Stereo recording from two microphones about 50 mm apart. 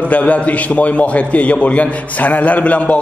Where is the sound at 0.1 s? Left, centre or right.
Left.